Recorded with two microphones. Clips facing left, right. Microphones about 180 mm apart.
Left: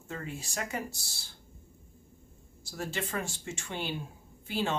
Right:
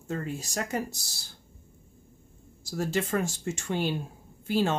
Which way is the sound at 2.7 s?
45° right (ahead or behind).